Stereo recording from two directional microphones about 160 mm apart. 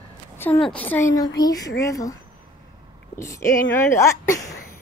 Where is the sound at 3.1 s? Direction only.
20° left (ahead or behind).